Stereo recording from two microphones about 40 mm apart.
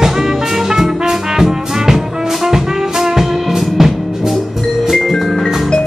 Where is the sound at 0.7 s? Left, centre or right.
Centre.